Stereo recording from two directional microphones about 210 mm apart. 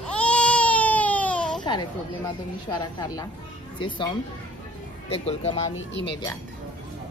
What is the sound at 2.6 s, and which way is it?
A woman's voice, 20° left (ahead or behind).